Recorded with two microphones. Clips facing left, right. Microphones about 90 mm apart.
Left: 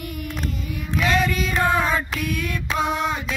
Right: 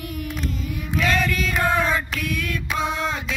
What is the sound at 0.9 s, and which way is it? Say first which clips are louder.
Music: left 1 dB; 15° left (ahead or behind).